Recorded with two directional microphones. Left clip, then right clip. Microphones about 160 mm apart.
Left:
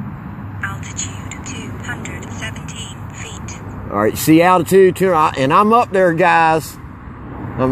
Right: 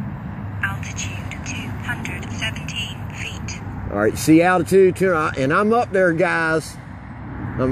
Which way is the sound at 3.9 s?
40° left (ahead or behind).